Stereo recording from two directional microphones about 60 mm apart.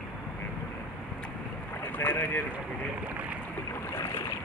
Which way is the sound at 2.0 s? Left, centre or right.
Left.